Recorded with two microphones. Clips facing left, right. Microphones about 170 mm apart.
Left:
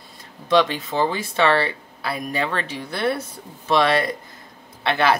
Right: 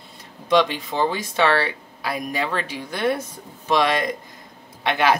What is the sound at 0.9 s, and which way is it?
Speech, 15° right (ahead or behind).